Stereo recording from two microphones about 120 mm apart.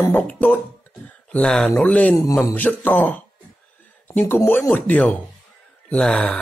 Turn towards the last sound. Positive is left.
turn(degrees=10)  # may be behind; listen again after turning